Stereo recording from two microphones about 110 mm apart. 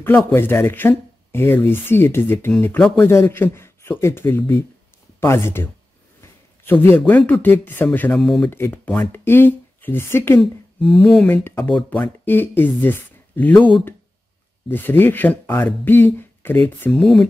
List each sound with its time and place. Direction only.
0.0 s a man's voice: 20° left (ahead or behind)
8.1 s speech: 5° left (ahead or behind)
8.5 s speech: 20° left (ahead or behind)
10.4 s a sound: 10° left (ahead or behind)
11.2 s speech: 20° left (ahead or behind)
16.9 s speech: 5° left (ahead or behind)